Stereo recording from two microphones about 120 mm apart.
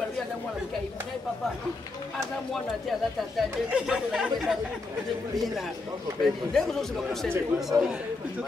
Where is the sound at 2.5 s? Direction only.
Centre (ahead or behind).